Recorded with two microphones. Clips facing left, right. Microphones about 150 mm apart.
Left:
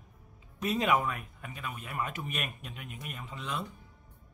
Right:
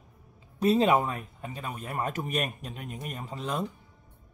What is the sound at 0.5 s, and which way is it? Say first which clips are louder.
A man's voice: right 6 dB; 30° right (ahead or behind).